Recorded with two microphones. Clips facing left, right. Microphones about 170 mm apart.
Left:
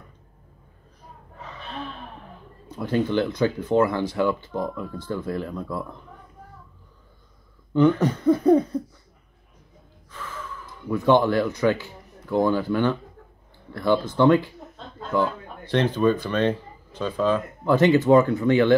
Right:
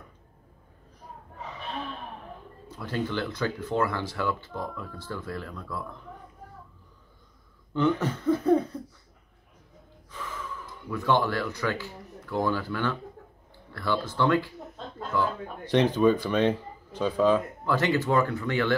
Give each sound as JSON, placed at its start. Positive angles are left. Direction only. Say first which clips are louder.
{"t": 2.8, "sound": "speech", "louder": "left 8 dB", "side_deg": 20}
{"t": 8.0, "sound": "speech", "louder": "left 6 dB", "side_deg": 15}
{"t": 10.9, "sound": "speech", "louder": "left 7 dB", "side_deg": 20}
{"t": 15.6, "sound": "speech", "louder": "left 1 dB", "side_deg": -15}
{"t": 17.6, "sound": "speech", "louder": "left 9 dB", "side_deg": 20}